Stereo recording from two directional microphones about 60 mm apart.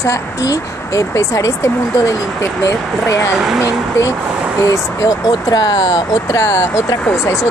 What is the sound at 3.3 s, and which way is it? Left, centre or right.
Speech, centre.